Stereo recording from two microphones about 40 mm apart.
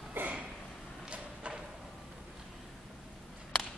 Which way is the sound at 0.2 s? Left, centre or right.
Right.